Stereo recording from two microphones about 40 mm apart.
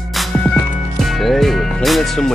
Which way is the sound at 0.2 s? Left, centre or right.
Centre.